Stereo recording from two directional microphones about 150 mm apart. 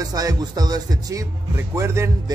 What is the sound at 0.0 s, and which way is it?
Speech, 25° right (ahead or behind).